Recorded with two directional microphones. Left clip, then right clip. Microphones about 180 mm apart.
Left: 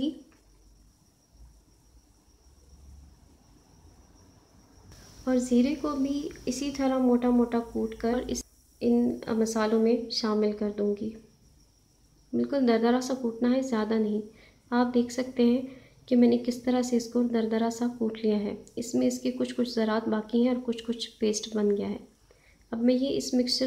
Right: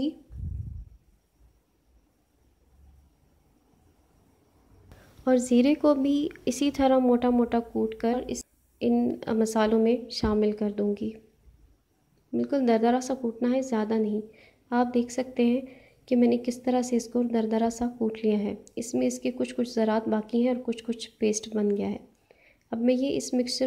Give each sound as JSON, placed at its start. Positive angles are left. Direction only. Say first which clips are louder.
{"t": 5.2, "sound": "speech", "louder": "right 3 dB", "side_deg": -40}
{"t": 8.2, "sound": "speech", "louder": "left 1 dB", "side_deg": -15}
{"t": 8.7, "sound": "speech", "louder": "even", "side_deg": -30}
{"t": 12.3, "sound": "speech", "louder": "right 1 dB", "side_deg": -25}